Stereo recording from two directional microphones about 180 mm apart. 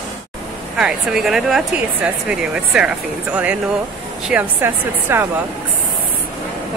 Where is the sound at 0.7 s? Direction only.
5° right (ahead or behind).